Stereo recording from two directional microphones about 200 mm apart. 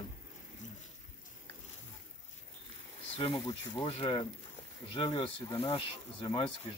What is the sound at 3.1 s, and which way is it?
Speech, 30° left (ahead or behind).